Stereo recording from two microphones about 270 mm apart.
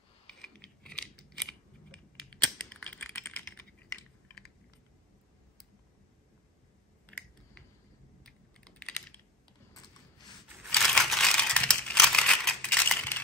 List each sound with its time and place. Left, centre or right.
0.3 s scissors: centre
8.2 s typing: centre
10.7 s crumpling: centre